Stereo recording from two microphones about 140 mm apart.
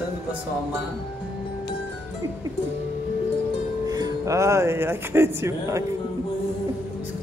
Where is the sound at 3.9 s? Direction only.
30° right (ahead or behind).